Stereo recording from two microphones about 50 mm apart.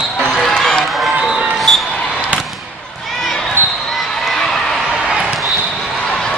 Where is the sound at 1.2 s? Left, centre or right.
Centre.